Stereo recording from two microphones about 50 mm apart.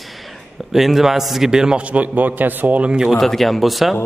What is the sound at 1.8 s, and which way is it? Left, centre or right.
Speech, right.